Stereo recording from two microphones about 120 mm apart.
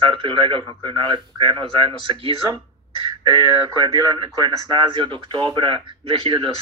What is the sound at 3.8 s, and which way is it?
Speech, 35° right (ahead or behind).